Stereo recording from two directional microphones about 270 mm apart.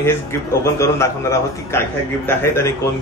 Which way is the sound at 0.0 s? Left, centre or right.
Centre.